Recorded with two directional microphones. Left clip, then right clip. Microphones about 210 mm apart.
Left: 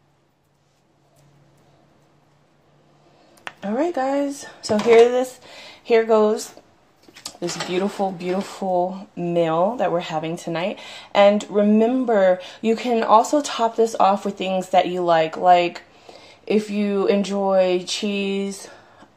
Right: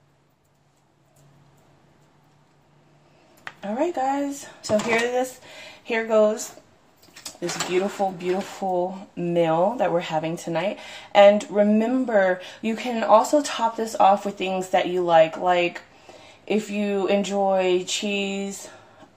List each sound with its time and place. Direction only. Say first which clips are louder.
3.6 s speech: left 2 dB; 40° left (ahead or behind)
8.0 s speech: left 1 dB; 30° left (ahead or behind)